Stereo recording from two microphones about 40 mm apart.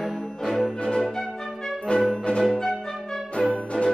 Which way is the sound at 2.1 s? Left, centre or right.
Centre.